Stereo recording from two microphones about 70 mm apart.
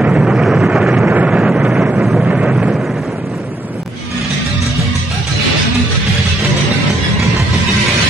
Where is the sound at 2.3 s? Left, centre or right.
Centre.